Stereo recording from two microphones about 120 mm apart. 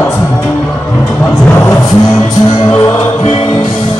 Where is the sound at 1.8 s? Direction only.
35° left (ahead or behind).